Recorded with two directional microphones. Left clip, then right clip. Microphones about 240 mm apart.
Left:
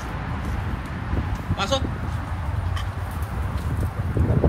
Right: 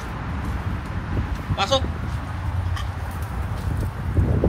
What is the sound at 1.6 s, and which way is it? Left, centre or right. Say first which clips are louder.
Speech: right 3 dB; right.